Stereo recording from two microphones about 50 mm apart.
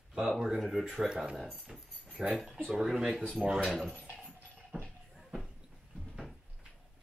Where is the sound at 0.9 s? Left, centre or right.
Centre.